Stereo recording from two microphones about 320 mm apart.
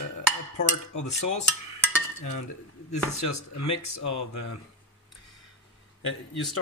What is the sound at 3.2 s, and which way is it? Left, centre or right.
Speech, left.